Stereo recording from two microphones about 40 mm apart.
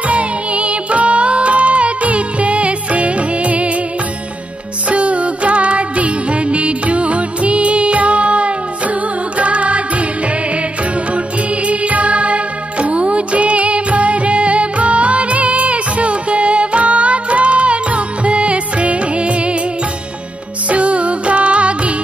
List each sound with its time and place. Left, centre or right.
0.0 s music: right
4.8 s music: right
11.6 s music: right
20.7 s music: right